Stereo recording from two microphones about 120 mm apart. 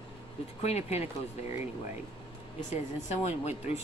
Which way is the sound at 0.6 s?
65° left (ahead or behind).